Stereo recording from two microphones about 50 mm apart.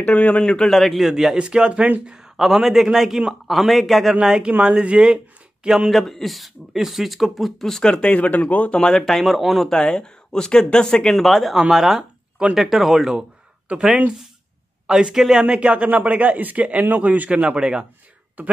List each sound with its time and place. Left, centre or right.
0.0 s speech: left
0.4 s a man's voice: centre
2.1 s speech: centre
4.2 s a man's voice: centre
5.9 s speech: centre
7.8 s speech: left
8.9 s speech: centre
9.7 s speech: centre
11.1 s speech: centre
11.7 s a sound: centre
12.5 s speech: centre
13.7 s a man's voice: centre
15.4 s a man's voice: right
17.4 s a man's voice: centre